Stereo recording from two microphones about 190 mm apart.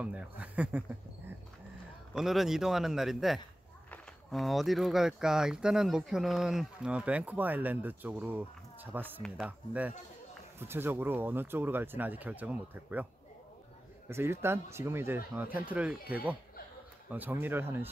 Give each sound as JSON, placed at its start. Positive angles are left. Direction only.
{"t": 0.0, "sound": "speech", "side_deg": -5}
{"t": 2.1, "sound": "speech", "side_deg": 0}
{"t": 14.0, "sound": "speech", "side_deg": -15}